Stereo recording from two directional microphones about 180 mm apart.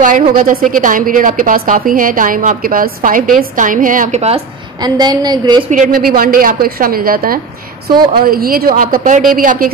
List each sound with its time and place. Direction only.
0.0 s a woman's voice: 50° right (ahead or behind)
4.7 s a woman's voice: 20° right (ahead or behind)
5.7 s a woman's voice: 50° right (ahead or behind)